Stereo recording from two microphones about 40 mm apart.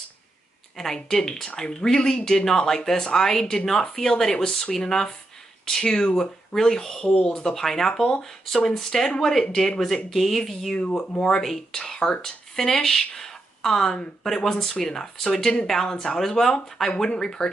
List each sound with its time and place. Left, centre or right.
0.7 s speech: centre
11.1 s speech: centre